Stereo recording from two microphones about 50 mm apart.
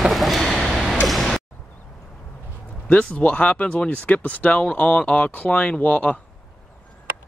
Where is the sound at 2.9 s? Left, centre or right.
Left.